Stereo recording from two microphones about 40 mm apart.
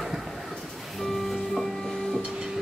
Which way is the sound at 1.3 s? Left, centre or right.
Centre.